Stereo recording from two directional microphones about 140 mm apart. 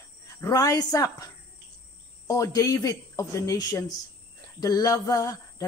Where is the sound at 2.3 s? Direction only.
25° left (ahead or behind).